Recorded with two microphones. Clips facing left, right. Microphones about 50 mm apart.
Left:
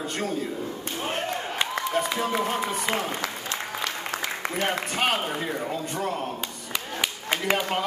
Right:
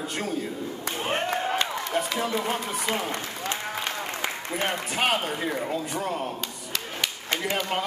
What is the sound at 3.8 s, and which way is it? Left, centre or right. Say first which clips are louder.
Applause: even; right.